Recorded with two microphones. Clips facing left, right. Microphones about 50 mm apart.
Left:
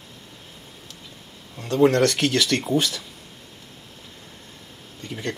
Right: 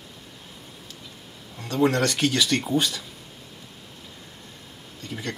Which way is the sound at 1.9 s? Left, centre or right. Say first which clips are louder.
Left 3 dB; left.